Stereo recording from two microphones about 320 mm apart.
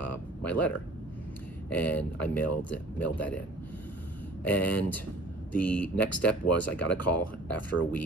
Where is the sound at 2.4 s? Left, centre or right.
Left.